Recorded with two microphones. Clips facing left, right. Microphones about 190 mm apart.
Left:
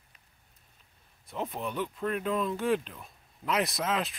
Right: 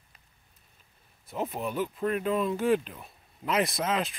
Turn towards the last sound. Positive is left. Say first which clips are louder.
# right 2 dB
turn(degrees=0)  # may be behind; listen again after turning